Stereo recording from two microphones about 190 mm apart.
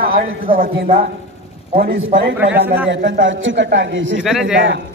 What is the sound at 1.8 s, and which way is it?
Speech, 60° right (ahead or behind).